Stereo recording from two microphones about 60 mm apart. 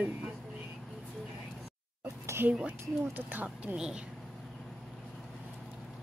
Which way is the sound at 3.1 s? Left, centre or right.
Right.